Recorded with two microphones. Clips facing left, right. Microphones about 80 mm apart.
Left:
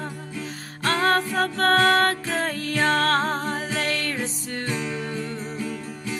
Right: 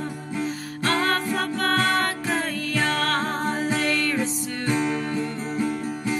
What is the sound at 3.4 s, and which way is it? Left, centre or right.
Music, right.